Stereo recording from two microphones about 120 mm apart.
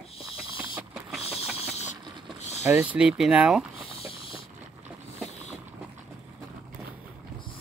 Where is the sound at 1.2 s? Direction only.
55° left (ahead or behind).